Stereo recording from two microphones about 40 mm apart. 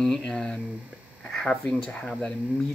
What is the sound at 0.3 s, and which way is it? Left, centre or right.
Speech, centre.